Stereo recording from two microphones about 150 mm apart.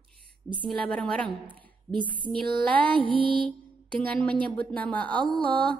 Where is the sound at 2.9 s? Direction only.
35° right (ahead or behind).